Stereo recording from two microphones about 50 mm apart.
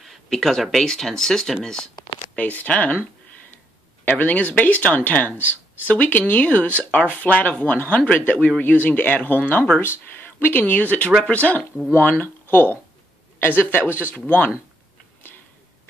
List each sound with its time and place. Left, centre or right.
0.0 s speech: centre
2.3 s speech: left
4.0 s speech: left